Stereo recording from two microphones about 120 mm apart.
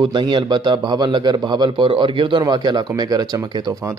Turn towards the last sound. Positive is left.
turn(degrees=-30)  # may be behind; listen again after turning